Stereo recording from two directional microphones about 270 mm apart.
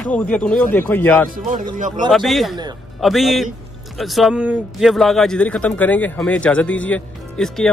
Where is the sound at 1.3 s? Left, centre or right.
Right.